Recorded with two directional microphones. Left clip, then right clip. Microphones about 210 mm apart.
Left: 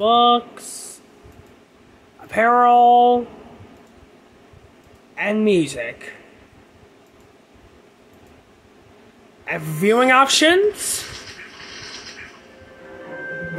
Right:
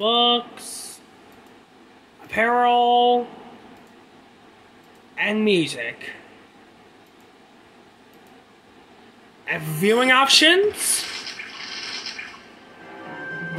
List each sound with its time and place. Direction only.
0.0 s speech: 10° left (ahead or behind)
2.3 s speech: 5° left (ahead or behind)
5.1 s speech: 10° left (ahead or behind)
9.4 s speech: 5° left (ahead or behind)